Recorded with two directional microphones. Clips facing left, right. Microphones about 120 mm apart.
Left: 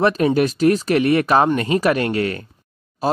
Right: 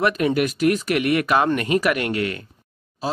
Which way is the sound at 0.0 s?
30° left (ahead or behind).